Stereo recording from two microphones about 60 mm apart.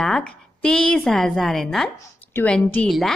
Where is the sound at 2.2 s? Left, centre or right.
Left.